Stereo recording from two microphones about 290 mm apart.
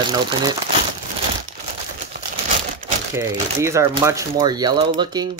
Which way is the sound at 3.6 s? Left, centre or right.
Centre.